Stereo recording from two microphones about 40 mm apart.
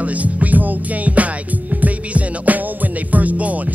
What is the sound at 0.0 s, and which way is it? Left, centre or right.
Music, right.